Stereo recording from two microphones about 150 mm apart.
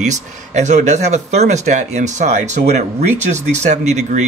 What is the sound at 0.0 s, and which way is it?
Speech, 50° right (ahead or behind).